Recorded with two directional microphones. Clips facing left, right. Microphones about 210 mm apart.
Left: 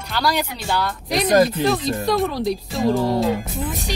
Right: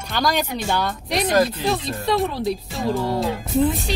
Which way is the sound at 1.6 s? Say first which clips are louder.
Left 3 dB; centre (ahead or behind).